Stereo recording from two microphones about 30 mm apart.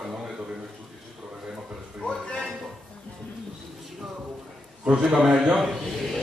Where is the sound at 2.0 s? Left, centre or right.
Left.